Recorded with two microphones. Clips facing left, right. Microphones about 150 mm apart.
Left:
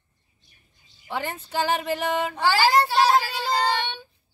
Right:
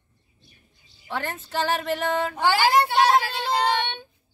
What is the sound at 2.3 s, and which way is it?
Speech, 10° right (ahead or behind).